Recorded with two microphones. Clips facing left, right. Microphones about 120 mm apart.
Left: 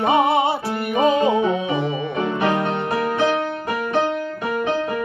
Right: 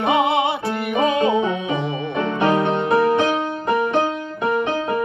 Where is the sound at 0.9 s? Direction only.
Centre (ahead or behind).